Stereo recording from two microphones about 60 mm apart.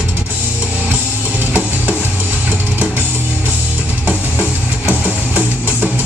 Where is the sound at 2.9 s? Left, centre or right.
Right.